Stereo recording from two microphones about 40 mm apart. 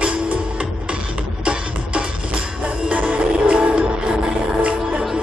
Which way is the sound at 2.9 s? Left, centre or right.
Right.